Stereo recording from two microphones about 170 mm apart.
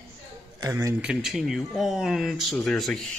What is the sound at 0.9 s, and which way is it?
Speech, 5° right (ahead or behind).